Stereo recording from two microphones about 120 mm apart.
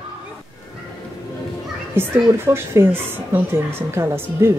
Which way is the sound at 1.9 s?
20° right (ahead or behind).